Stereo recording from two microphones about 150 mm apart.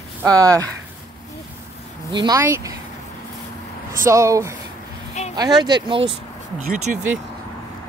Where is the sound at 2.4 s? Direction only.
20° right (ahead or behind).